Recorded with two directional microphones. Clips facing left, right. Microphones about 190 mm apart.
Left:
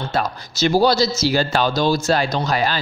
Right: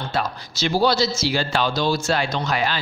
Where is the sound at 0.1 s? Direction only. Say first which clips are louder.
Left 2 dB; 45° left (ahead or behind).